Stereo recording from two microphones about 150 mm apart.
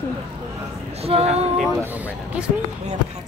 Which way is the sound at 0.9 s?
40° right (ahead or behind).